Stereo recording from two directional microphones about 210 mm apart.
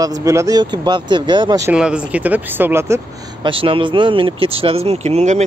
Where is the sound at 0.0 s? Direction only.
15° right (ahead or behind).